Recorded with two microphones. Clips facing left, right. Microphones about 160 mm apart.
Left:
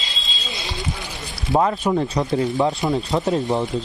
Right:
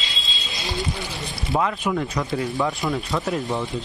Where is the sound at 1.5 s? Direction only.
35° left (ahead or behind).